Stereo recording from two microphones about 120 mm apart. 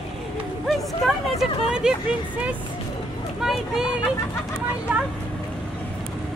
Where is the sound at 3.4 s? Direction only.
5° right (ahead or behind).